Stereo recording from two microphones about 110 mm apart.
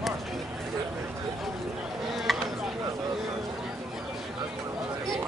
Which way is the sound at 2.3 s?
Centre (ahead or behind).